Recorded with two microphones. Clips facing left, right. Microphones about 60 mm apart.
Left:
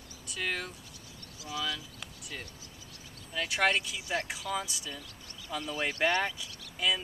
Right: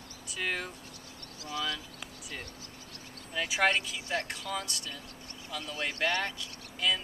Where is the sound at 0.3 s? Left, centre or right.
Centre.